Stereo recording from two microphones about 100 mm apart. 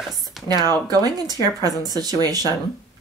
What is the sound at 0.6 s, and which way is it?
Speech, 40° right (ahead or behind).